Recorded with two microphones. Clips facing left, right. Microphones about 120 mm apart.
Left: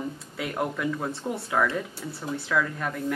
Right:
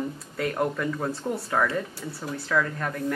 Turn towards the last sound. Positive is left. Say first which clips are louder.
# right 1 dB
turn(degrees=5)  # may be behind; listen again after turning